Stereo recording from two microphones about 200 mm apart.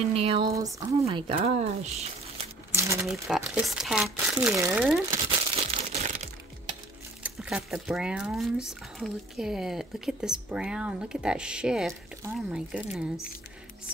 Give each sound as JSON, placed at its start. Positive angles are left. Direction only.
{"t": 0.1, "sound": "a sound", "side_deg": -30}
{"t": 0.6, "sound": "speech", "side_deg": -15}
{"t": 1.2, "sound": "speech", "side_deg": -30}
{"t": 2.7, "sound": "a sound", "side_deg": -15}
{"t": 3.1, "sound": "speech", "side_deg": 0}
{"t": 5.6, "sound": "crumpling", "side_deg": -35}
{"t": 7.2, "sound": "speech", "side_deg": -5}